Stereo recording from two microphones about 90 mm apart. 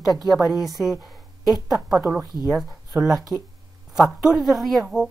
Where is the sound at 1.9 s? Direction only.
20° right (ahead or behind).